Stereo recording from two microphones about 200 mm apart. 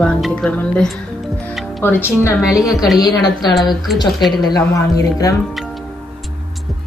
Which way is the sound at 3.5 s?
Centre (ahead or behind).